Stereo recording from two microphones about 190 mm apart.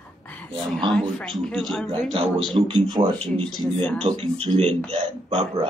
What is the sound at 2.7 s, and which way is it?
Speech, 20° right (ahead or behind).